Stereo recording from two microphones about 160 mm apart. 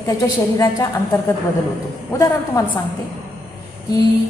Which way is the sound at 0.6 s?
15° left (ahead or behind).